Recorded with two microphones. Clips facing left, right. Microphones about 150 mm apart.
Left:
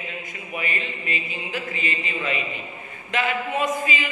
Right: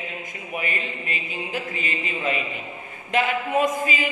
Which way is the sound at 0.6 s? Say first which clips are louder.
Even; 45° right (ahead or behind).